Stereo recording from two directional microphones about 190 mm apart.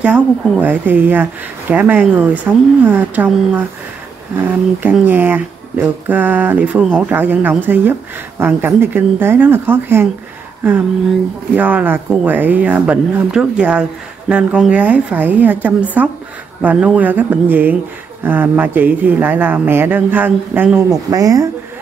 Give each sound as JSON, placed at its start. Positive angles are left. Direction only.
{"t": 0.0, "sound": "speech", "side_deg": -10}
{"t": 11.5, "sound": "speech", "side_deg": -10}